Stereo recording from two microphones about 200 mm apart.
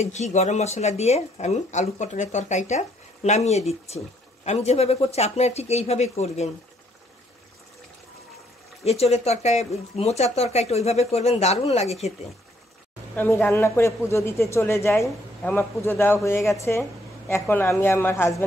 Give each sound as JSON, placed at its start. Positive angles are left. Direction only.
{"t": 0.0, "sound": "speech", "side_deg": 35}
{"t": 8.8, "sound": "speech", "side_deg": 30}
{"t": 13.1, "sound": "a man's voice", "side_deg": 10}